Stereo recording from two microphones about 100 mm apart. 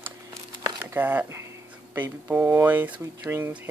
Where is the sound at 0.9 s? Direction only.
20° right (ahead or behind).